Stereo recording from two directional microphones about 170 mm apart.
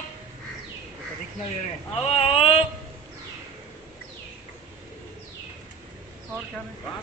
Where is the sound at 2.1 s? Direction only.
35° left (ahead or behind).